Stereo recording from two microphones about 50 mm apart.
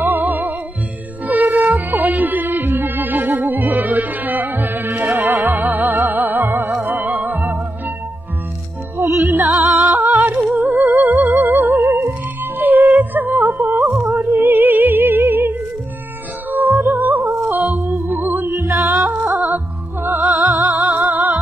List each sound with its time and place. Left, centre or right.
0.0 s music: right
5.6 s music: right
9.4 s music: right
13.7 s music: right
14.0 s music: right
17.2 s music: right
17.6 s music: right
18.6 s music: right
20.0 s music: right